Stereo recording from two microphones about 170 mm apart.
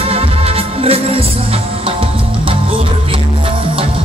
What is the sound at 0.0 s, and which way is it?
Music, 35° right (ahead or behind).